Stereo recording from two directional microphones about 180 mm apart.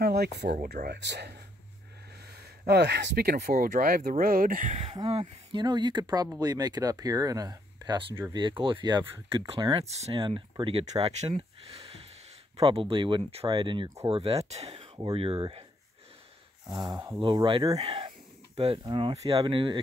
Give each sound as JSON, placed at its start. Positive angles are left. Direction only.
{"t": 0.0, "sound": "speech", "side_deg": -65}
{"t": 0.5, "sound": "speech", "side_deg": -55}
{"t": 2.6, "sound": "speech", "side_deg": -65}
{"t": 5.1, "sound": "speech", "side_deg": -25}
{"t": 16.7, "sound": "speech", "side_deg": -20}